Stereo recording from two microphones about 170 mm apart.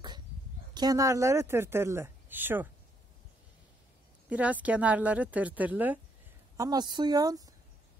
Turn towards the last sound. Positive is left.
turn(degrees=-20)  # may be behind; listen again after turning